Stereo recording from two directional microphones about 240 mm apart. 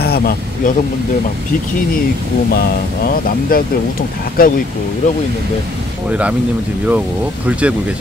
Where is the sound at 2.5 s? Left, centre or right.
Left.